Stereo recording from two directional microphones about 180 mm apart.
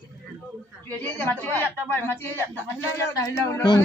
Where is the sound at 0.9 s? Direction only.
10° left (ahead or behind).